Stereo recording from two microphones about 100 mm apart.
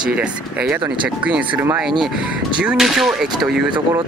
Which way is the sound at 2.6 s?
5° right (ahead or behind).